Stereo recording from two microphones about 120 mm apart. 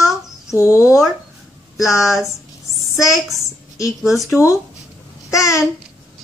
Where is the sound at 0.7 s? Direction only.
5° right (ahead or behind).